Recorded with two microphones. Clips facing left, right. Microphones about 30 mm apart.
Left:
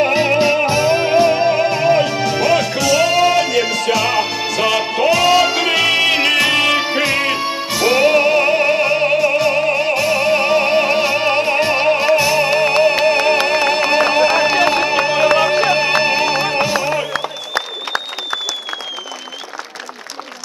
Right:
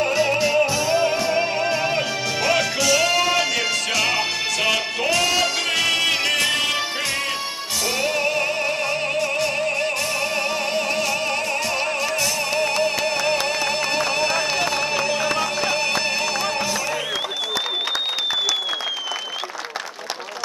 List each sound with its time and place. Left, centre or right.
0.0 s music: left